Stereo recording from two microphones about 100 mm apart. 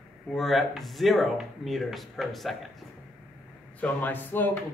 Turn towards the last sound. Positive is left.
turn(degrees=20)  # may be behind; listen again after turning